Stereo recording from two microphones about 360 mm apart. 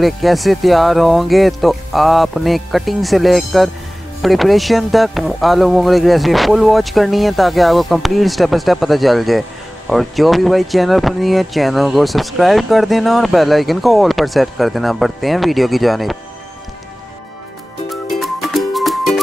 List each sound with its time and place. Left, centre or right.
0.0 s speech: centre
18.1 s music: centre